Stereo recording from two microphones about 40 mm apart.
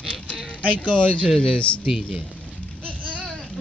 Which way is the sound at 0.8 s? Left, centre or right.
Left.